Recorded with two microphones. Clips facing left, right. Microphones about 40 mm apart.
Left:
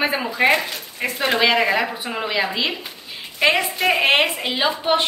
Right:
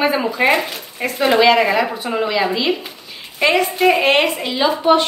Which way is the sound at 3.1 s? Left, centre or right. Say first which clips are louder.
Right 2 dB; centre.